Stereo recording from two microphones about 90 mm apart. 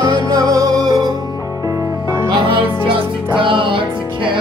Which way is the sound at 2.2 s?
65° right (ahead or behind).